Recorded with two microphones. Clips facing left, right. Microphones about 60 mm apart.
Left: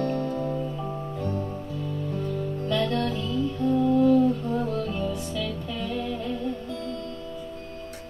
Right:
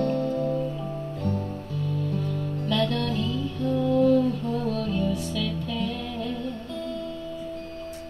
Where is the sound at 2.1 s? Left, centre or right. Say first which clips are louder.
Even; centre.